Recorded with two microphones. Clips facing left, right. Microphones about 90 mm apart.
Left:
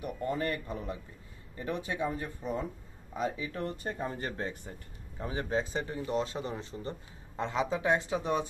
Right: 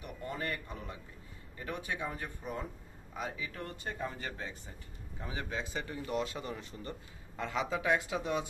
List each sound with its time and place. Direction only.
0.0 s speech: 40° left (ahead or behind)
1.6 s speech: 25° left (ahead or behind)